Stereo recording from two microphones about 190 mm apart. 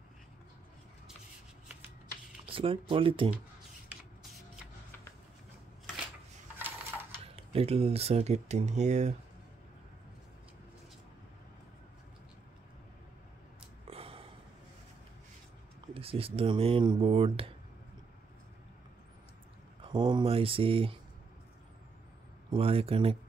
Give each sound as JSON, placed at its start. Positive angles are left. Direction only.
{"t": 2.5, "sound": "speech", "side_deg": -30}
{"t": 6.6, "sound": "coin", "side_deg": -10}
{"t": 7.3, "sound": "speech", "side_deg": -30}
{"t": 13.8, "sound": "a sound", "side_deg": -30}
{"t": 15.9, "sound": "speech", "side_deg": -30}
{"t": 19.8, "sound": "speech", "side_deg": -25}
{"t": 22.5, "sound": "speech", "side_deg": -30}